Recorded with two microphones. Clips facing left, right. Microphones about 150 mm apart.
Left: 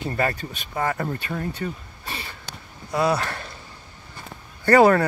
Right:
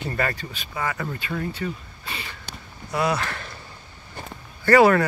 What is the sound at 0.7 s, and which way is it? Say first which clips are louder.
Speech: left 3 dB; 45° left (ahead or behind).